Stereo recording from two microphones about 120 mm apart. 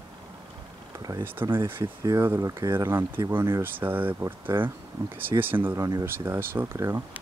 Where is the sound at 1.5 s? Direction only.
20° right (ahead or behind).